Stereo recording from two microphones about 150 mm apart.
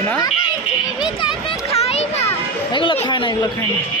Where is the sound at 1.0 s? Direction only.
35° left (ahead or behind).